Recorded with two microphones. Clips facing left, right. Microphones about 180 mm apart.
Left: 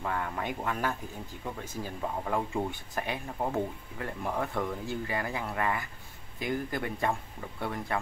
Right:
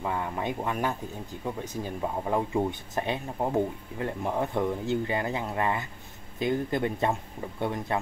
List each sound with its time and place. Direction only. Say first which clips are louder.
0.0 s speech: right 3 dB; 15° right (ahead or behind)